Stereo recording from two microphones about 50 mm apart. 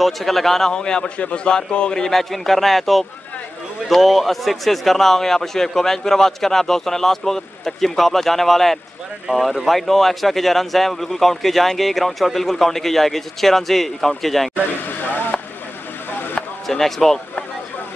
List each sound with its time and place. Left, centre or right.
0.0 s a man's voice: centre
2.0 s speech: centre
14.5 s speech: left
16.6 s speech: centre